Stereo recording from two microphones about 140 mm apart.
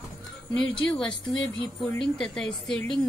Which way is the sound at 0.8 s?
5° left (ahead or behind).